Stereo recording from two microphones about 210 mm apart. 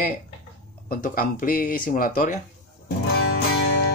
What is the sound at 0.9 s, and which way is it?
Speech, 40° left (ahead or behind).